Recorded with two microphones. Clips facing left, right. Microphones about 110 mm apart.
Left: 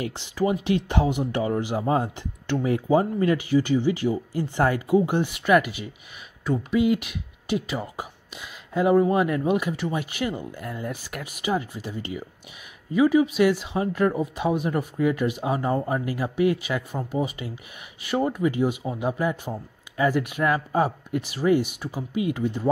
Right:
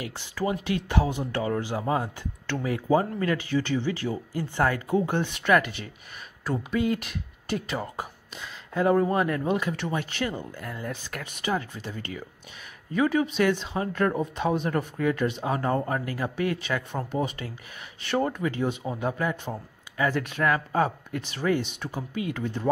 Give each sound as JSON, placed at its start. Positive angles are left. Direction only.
{"t": 0.0, "sound": "speech", "side_deg": 20}
{"t": 6.4, "sound": "speech", "side_deg": 0}